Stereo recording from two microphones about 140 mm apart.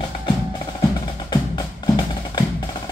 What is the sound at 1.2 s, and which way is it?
Music, 30° left (ahead or behind).